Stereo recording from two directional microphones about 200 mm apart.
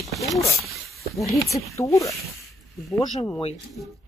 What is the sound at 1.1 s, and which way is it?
Speech, 15° left (ahead or behind).